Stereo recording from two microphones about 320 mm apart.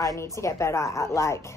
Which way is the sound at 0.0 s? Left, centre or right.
Centre.